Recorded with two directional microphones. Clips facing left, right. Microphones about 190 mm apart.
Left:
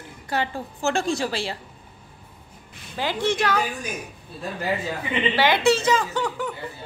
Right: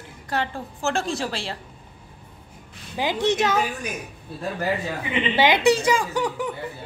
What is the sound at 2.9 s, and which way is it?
Speech, 15° right (ahead or behind).